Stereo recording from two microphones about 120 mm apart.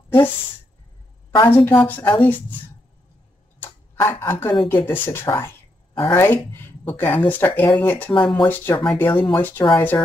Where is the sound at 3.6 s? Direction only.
20° left (ahead or behind).